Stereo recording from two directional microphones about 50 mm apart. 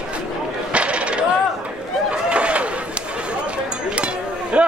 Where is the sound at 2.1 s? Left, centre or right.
Right.